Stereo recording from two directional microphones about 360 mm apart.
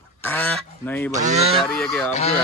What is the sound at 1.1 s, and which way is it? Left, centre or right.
Goose, centre.